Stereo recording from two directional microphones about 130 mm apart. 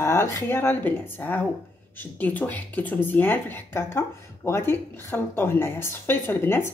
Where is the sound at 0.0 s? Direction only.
20° left (ahead or behind).